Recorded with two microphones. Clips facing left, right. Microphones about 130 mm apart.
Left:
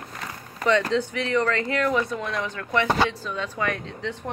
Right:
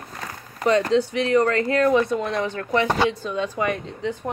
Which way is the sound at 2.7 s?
15° right (ahead or behind).